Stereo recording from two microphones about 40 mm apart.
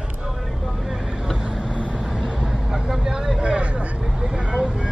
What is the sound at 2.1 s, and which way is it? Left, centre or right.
Vehicle, centre.